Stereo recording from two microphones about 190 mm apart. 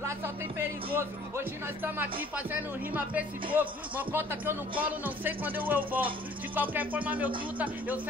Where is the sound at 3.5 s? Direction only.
10° right (ahead or behind).